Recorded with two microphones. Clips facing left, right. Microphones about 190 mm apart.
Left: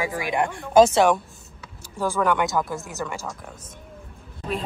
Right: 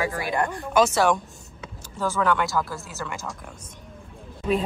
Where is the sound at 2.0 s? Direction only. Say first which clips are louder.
Left 1 dB; 10° left (ahead or behind).